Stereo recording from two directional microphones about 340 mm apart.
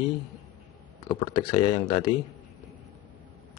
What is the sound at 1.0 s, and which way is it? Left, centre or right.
Speech, centre.